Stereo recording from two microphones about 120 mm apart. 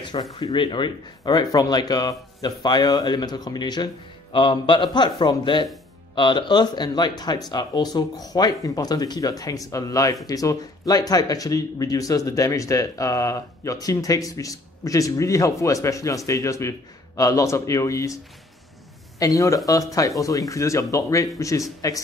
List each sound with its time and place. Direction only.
0.0 s speech: 40° left (ahead or behind)